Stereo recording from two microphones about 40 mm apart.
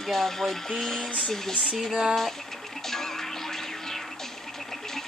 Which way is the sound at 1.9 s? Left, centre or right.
Centre.